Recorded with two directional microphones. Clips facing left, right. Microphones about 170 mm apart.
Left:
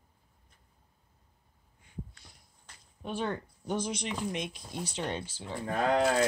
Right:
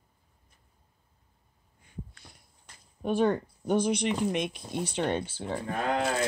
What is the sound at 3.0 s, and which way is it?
Speech, 50° right (ahead or behind).